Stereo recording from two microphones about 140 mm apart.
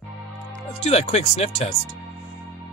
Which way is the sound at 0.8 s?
50° left (ahead or behind).